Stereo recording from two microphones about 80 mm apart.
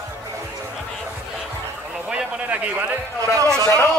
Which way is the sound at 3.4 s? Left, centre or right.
Right.